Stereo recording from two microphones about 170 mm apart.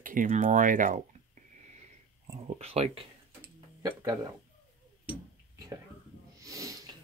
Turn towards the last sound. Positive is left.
turn(degrees=-20)  # may be behind; listen again after turning